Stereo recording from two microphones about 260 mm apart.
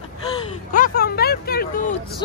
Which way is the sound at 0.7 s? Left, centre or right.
Left.